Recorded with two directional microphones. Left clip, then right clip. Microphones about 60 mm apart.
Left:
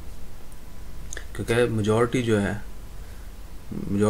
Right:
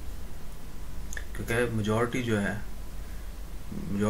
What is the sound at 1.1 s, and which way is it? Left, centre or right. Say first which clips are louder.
Speech: left 6 dB; left.